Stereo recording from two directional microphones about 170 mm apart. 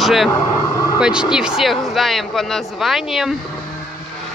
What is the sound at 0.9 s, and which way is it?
Speech, 5° right (ahead or behind).